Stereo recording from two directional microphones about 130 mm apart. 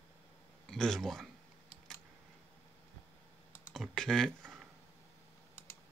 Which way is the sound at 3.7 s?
5° left (ahead or behind).